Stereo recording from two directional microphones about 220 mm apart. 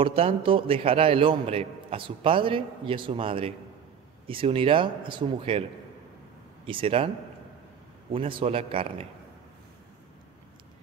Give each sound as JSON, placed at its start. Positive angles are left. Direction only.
{"t": 0.0, "sound": "a man's voice", "side_deg": -25}
{"t": 8.1, "sound": "a man's voice", "side_deg": -25}